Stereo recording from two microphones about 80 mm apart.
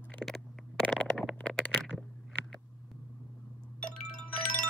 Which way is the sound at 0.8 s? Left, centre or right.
Centre.